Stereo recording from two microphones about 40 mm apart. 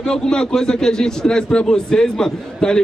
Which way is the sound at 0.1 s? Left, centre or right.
Centre.